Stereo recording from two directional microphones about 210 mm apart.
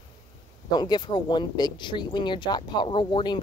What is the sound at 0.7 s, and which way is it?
Speech, 20° left (ahead or behind).